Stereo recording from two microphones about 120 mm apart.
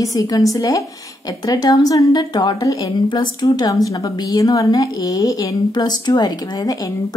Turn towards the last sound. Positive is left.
turn(degrees=30)  # may be behind; listen again after turning